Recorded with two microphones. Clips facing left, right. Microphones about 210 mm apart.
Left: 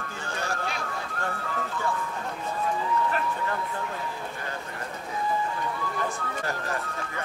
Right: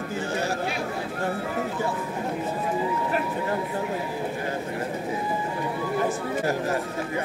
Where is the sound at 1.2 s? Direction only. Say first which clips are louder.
Right 6 dB; 20° right (ahead or behind).